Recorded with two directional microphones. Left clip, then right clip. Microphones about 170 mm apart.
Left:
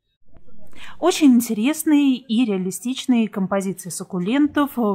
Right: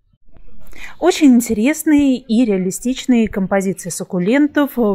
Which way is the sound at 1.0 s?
20° right (ahead or behind).